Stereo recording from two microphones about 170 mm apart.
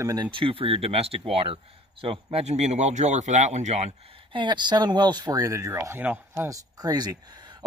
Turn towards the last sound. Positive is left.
turn(degrees=-20)  # may be behind; listen again after turning